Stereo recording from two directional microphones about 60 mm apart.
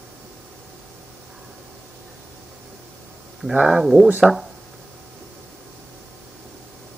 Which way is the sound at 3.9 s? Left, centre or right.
Right.